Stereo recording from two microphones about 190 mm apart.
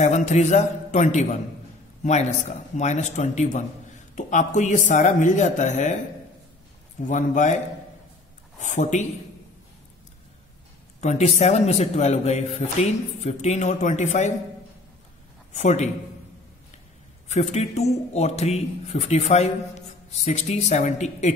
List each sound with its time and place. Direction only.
0.0 s a man's voice: 40° left (ahead or behind)
7.1 s a man's voice: 40° left (ahead or behind)
8.5 s a man's voice: 40° left (ahead or behind)
11.0 s a man's voice: 35° left (ahead or behind)
15.5 s a man's voice: 40° left (ahead or behind)
17.3 s a man's voice: 35° left (ahead or behind)